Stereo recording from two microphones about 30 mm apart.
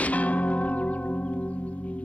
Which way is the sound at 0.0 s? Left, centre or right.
Left.